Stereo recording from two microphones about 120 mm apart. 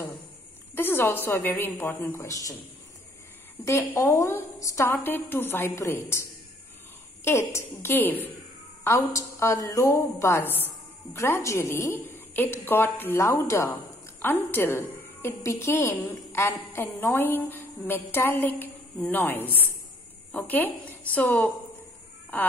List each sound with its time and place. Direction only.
0.7 s a woman's voice: 20° left (ahead or behind)
3.6 s a woman's voice: 25° left (ahead or behind)
7.2 s a woman's voice: 20° left (ahead or behind)